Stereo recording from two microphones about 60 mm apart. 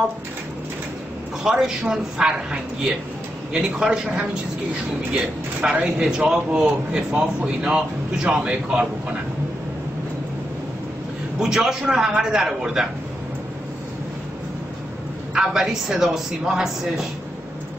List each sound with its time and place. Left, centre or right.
1.4 s a man's voice: centre
11.4 s a man's voice: centre
15.3 s a man's voice: centre